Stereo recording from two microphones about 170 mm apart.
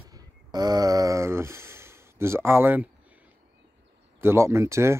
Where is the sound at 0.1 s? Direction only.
25° right (ahead or behind).